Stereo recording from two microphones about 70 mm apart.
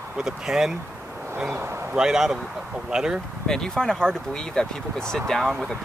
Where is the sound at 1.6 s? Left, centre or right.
Right.